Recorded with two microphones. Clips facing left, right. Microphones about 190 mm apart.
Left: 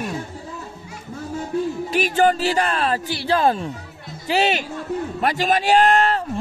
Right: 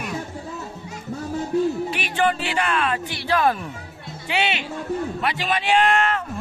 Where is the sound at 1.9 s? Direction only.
40° left (ahead or behind).